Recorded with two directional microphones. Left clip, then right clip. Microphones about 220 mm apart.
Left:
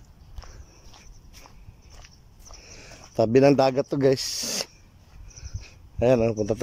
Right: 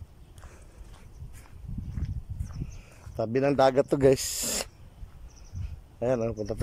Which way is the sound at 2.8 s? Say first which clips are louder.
Left 9 dB; 15° left (ahead or behind).